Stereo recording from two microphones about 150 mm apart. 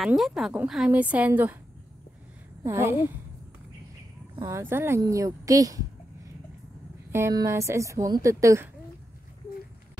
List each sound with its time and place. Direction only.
0.0 s a woman's voice: centre (ahead or behind)
2.6 s a woman's voice: 20° right (ahead or behind)
4.4 s a woman's voice: 20° right (ahead or behind)
7.1 s speech: 20° right (ahead or behind)